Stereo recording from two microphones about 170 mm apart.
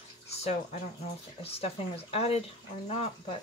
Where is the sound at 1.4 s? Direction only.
35° left (ahead or behind).